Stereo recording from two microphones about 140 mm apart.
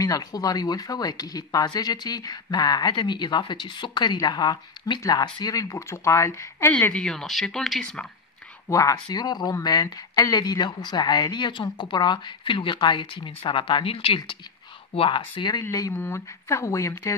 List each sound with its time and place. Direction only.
0.0 s speech: 25° left (ahead or behind)
6.7 s speech: 10° left (ahead or behind)
8.6 s speech: 25° left (ahead or behind)
15.7 s speech: 20° left (ahead or behind)